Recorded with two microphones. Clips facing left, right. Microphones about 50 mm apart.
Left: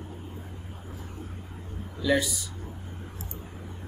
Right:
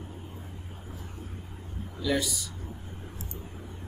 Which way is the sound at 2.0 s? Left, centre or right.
Centre.